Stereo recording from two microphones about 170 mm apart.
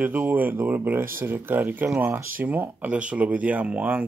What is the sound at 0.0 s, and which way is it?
Speech, 10° right (ahead or behind).